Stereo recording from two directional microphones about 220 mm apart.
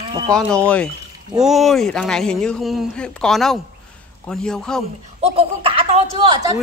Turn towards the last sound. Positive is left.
turn(degrees=-25)  # may be behind; listen again after turning